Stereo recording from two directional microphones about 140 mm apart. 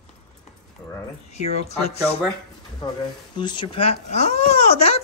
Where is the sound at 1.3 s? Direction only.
50° left (ahead or behind).